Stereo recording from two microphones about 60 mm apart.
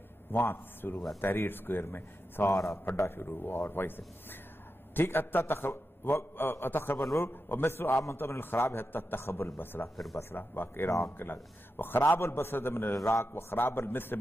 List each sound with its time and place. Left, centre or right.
0.3 s a man's voice: left
2.5 s a man's voice: left
8.0 s a man's voice: left
12.9 s a man's voice: left